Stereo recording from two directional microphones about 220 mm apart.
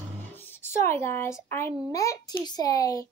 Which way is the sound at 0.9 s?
10° left (ahead or behind).